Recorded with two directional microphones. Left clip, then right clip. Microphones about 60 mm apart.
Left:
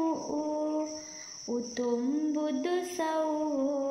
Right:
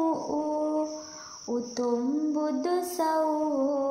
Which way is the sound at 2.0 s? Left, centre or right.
Right.